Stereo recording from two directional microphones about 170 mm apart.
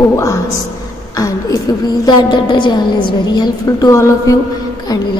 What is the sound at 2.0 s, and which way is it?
A woman's voice, 25° left (ahead or behind).